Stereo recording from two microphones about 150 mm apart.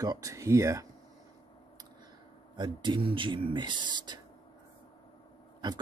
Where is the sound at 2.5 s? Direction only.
30° right (ahead or behind).